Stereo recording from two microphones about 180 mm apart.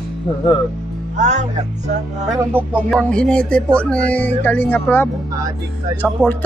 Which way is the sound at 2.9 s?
5° left (ahead or behind).